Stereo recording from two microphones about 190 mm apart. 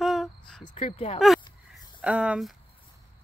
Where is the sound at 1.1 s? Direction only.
Centre (ahead or behind).